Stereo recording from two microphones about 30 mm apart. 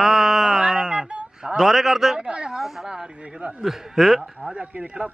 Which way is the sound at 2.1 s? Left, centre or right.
Right.